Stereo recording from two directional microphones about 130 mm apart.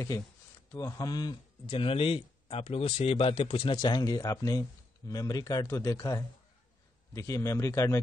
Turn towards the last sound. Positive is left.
turn(degrees=20)  # may be behind; listen again after turning